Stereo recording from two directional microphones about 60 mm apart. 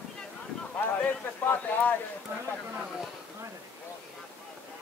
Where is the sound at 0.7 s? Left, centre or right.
Left.